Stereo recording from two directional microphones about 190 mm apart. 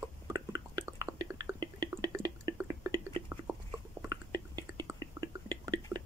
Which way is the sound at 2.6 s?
15° right (ahead or behind).